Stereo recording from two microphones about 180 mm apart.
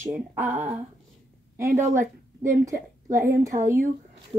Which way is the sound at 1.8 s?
45° right (ahead or behind).